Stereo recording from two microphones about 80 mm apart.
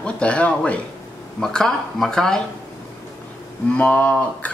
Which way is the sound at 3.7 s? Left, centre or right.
Centre.